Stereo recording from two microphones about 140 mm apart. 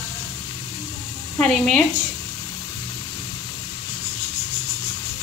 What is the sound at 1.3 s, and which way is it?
Speech, 5° left (ahead or behind).